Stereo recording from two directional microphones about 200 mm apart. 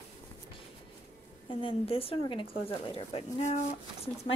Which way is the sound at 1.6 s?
25° left (ahead or behind).